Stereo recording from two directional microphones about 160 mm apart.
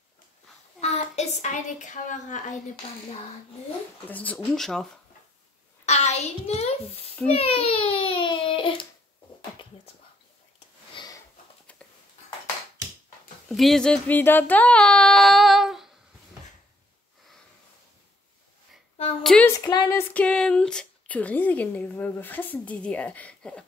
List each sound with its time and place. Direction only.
0.7 s a woman's voice: 40° left (ahead or behind)
4.1 s speech: 10° left (ahead or behind)
5.9 s a sound: 45° left (ahead or behind)
7.3 s a child's voice: 40° left (ahead or behind)
7.9 s a sound: 35° left (ahead or behind)
11.0 s sniff: 30° left (ahead or behind)
13.5 s speech: centre (ahead or behind)
19.2 s speech: 5° left (ahead or behind)
19.5 s speech: 25° left (ahead or behind); by 23.6 s 5° left (ahead or behind)